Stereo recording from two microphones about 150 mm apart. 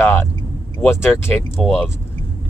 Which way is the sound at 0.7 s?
15° left (ahead or behind).